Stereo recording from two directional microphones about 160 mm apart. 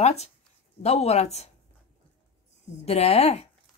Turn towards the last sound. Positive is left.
turn(degrees=40)  # may be behind; listen again after turning